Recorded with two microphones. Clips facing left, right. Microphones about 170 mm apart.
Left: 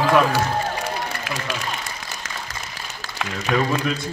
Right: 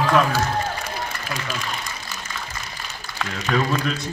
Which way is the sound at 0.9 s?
70° left (ahead or behind).